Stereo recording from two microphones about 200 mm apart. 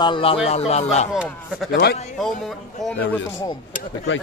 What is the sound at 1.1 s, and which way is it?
Speech, centre (ahead or behind).